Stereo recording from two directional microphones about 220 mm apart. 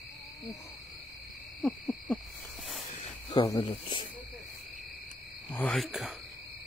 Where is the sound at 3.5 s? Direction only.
20° left (ahead or behind).